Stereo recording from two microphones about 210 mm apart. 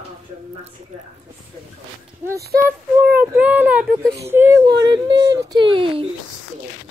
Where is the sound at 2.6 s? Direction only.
10° right (ahead or behind).